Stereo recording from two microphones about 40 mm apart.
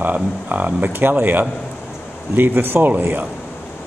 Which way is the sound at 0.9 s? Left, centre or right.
Right.